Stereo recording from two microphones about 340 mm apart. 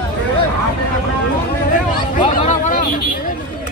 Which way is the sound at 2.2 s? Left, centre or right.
Left.